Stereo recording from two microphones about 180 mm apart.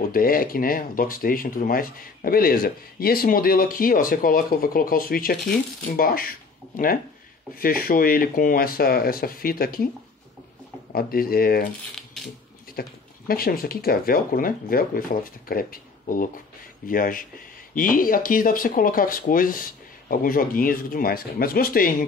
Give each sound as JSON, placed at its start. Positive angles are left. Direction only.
{"t": 0.1, "sound": "speech", "side_deg": 55}
{"t": 7.5, "sound": "speech", "side_deg": 55}
{"t": 10.9, "sound": "speech", "side_deg": 55}
{"t": 12.8, "sound": "speech", "side_deg": 55}